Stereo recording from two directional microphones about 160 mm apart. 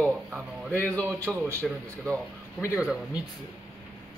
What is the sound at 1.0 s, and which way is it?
Speech, 15° right (ahead or behind).